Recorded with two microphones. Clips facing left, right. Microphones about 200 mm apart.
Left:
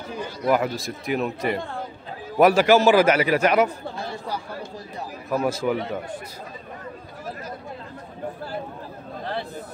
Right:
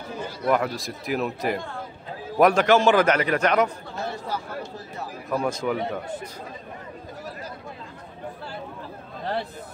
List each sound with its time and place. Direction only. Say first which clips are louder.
0.5 s a man's voice: left 1 dB; 5° left (ahead or behind)
5.3 s a man's voice: left 2 dB; 5° left (ahead or behind)